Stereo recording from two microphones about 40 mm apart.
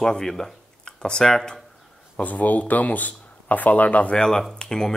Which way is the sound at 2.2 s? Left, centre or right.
Left.